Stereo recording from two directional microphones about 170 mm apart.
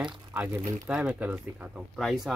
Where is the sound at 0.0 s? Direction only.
10° right (ahead or behind).